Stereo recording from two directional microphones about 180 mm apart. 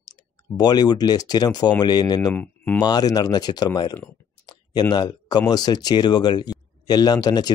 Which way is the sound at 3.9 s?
10° left (ahead or behind).